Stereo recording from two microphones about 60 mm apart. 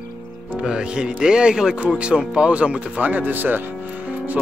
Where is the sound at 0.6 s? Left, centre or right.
Centre.